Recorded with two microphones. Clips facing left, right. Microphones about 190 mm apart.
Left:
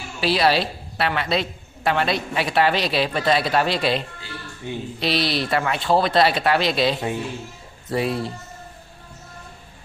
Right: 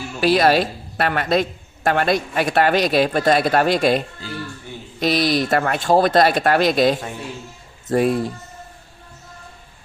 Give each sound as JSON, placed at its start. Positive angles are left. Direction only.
{"t": 0.2, "sound": "a man's voice", "side_deg": -45}
{"t": 4.7, "sound": "speech", "side_deg": 15}
{"t": 5.0, "sound": "a man's voice", "side_deg": -45}